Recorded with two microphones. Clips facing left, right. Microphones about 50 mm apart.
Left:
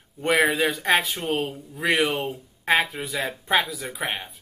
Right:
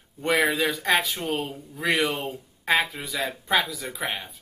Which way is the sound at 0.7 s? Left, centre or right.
Left.